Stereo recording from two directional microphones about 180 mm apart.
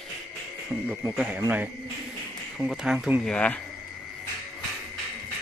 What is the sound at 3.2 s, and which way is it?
Speech, 5° left (ahead or behind).